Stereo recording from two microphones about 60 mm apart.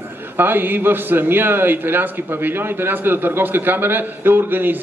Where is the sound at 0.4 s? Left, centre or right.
Right.